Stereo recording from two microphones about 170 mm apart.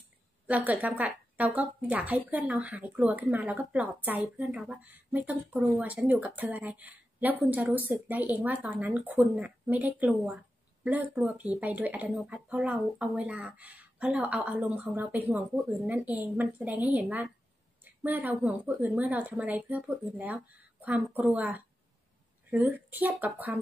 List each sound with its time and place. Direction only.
0.5 s a woman's voice: 10° right (ahead or behind)